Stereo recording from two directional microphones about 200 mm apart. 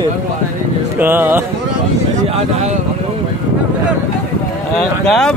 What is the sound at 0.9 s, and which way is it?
Music, 10° right (ahead or behind).